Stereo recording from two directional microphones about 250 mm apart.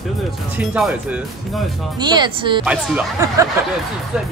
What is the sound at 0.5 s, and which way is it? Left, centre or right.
Speech, centre.